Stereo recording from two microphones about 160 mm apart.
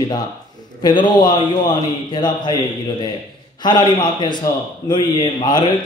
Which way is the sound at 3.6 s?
30° left (ahead or behind).